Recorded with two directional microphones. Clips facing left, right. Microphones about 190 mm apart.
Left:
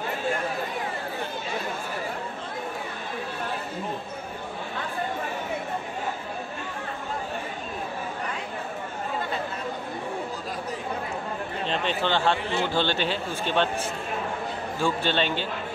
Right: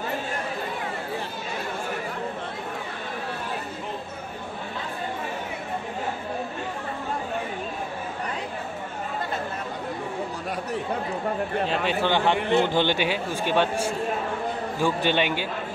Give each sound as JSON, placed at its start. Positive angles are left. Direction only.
{"t": 11.6, "sound": "a man's voice", "side_deg": -10}
{"t": 12.4, "sound": "a man's voice", "side_deg": -60}
{"t": 12.6, "sound": "a man's voice", "side_deg": -15}